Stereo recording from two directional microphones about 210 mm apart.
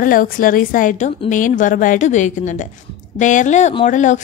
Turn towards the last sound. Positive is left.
turn(degrees=35)  # may be behind; listen again after turning